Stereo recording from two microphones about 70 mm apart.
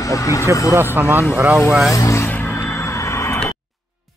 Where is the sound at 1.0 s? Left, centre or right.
Right.